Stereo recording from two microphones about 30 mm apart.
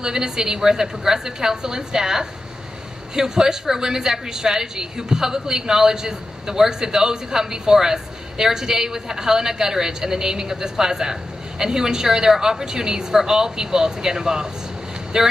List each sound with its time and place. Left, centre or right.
0.0 s a woman's voice: right